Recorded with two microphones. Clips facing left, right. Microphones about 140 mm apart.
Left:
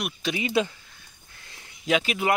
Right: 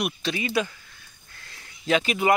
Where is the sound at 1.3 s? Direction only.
15° left (ahead or behind).